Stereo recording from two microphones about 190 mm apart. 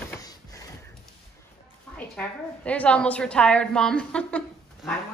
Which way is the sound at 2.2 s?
5° left (ahead or behind).